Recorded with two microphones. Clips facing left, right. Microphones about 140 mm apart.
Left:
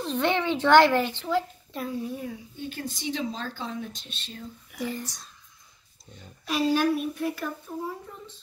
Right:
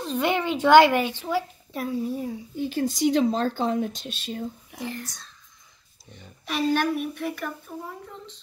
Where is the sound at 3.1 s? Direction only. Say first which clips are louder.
Right 7 dB; 40° right (ahead or behind).